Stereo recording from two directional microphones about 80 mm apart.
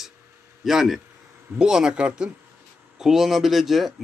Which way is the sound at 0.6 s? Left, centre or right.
Centre.